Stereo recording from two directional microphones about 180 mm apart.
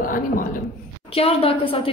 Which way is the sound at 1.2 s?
30° left (ahead or behind).